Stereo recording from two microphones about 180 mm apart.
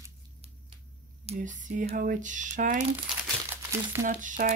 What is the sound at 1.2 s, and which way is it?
Speech, 45° right (ahead or behind).